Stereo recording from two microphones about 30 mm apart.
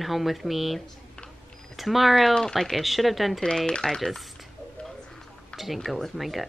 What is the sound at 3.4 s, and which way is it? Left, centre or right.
Speech, left.